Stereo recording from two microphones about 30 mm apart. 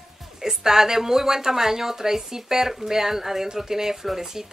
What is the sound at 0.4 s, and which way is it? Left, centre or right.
Speech, centre.